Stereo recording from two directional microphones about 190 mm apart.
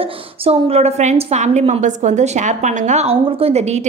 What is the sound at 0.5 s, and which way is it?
A woman's voice, 35° right (ahead or behind).